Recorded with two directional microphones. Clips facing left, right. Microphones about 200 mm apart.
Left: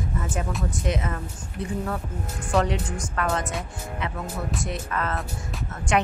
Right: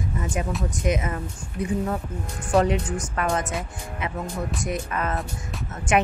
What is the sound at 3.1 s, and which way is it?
Speech, 20° right (ahead or behind).